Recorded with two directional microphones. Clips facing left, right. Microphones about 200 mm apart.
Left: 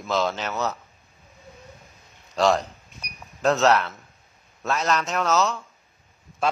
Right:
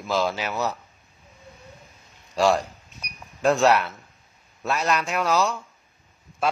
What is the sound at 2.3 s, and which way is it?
Speech, 5° right (ahead or behind).